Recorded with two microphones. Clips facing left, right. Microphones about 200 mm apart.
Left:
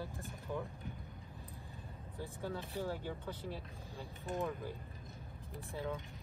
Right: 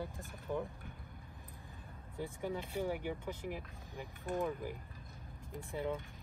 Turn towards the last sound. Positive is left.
turn(degrees=-15)  # may be behind; listen again after turning